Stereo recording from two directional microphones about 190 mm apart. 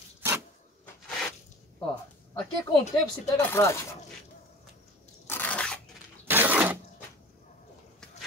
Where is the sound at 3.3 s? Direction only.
15° left (ahead or behind).